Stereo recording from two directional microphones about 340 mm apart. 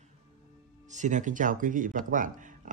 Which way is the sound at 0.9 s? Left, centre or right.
Right.